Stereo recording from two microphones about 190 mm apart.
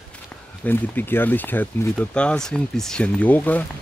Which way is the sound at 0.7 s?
10° left (ahead or behind).